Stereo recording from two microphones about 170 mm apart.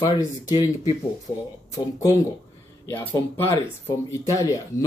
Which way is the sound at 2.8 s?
15° left (ahead or behind).